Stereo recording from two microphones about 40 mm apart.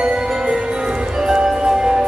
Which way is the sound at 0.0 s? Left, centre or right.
Right.